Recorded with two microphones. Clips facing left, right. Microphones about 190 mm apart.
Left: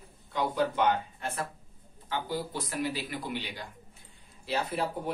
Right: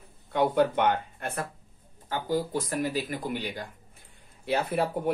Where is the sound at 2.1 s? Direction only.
45° right (ahead or behind).